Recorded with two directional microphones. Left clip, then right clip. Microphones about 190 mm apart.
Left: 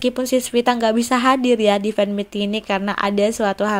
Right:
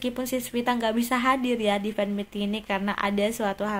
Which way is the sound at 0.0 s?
35° left (ahead or behind).